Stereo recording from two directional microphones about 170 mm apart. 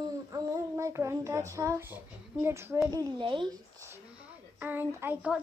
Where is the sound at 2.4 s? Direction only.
15° right (ahead or behind).